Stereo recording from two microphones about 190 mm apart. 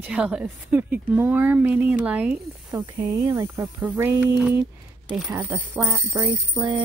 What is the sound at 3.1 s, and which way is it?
Speech, 15° right (ahead or behind).